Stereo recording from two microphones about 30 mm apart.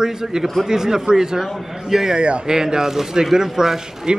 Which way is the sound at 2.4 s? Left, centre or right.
Right.